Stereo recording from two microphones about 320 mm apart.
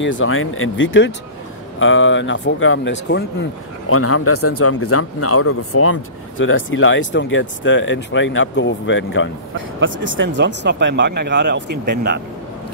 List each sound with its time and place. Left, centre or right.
0.0 s speech: left
9.8 s speech: right